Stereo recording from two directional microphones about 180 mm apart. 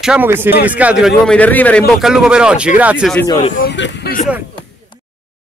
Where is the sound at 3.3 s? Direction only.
25° left (ahead or behind).